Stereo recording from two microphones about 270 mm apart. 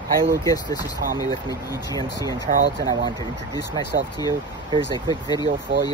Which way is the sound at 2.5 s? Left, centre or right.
Right.